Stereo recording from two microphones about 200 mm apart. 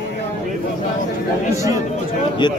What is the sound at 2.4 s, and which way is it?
Speech, 20° left (ahead or behind).